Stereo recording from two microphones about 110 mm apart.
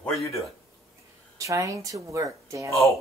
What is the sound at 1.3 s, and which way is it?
Speech, 30° right (ahead or behind).